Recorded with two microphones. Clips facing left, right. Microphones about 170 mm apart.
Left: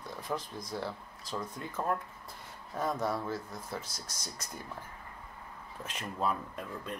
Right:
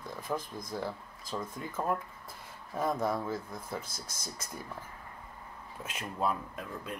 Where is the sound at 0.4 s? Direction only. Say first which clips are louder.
Right 1 dB; 50° right (ahead or behind).